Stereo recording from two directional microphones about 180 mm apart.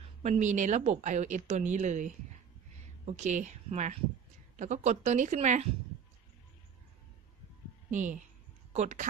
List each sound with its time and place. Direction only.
0.2 s speech: 40° right (ahead or behind)
7.9 s speech: 45° right (ahead or behind)